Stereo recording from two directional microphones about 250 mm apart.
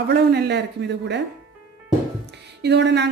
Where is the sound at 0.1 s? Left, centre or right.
Right.